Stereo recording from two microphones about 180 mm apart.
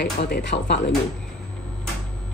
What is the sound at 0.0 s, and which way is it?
Speech, 70° left (ahead or behind).